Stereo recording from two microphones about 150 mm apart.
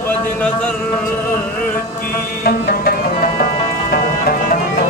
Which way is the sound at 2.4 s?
80° left.